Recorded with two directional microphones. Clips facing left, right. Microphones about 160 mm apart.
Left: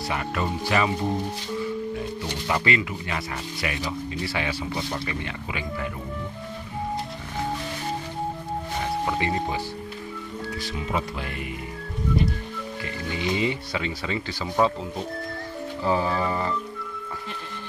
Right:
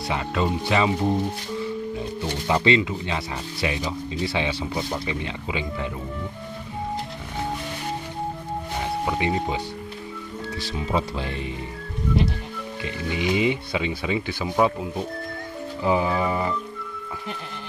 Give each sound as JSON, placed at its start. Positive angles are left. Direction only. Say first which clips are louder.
{"t": 0.1, "sound": "speech", "louder": "right 4 dB", "side_deg": -20}
{"t": 2.4, "sound": "speech", "louder": "right 5 dB", "side_deg": -25}
{"t": 9.0, "sound": "speech", "louder": "right 3 dB", "side_deg": -15}
{"t": 10.7, "sound": "speech", "louder": "right 4 dB", "side_deg": -30}
{"t": 12.8, "sound": "speech", "louder": "right 4 dB", "side_deg": -15}